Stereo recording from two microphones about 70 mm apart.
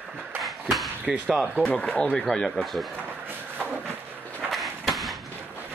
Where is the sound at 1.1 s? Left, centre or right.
Centre.